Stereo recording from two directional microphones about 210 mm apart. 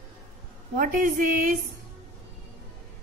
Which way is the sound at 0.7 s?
40° right (ahead or behind).